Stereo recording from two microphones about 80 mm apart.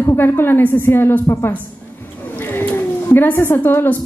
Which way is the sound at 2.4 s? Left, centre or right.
Left.